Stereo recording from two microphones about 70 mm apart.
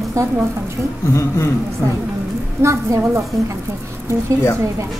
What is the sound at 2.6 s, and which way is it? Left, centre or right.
Speech, right.